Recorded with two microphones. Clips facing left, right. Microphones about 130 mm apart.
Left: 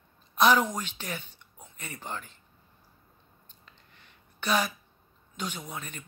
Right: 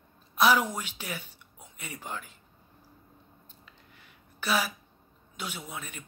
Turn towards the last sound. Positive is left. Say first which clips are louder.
# left 1 dB
turn(degrees=-5)  # may be behind; listen again after turning